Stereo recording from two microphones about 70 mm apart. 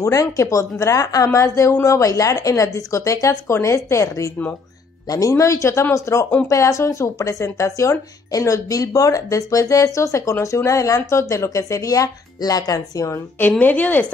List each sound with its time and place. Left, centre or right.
0.0 s speech: left
5.0 s speech: left
5.3 s speech: left
13.6 s a woman's voice: left